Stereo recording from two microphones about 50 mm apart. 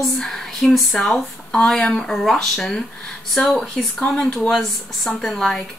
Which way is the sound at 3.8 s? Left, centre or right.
Centre.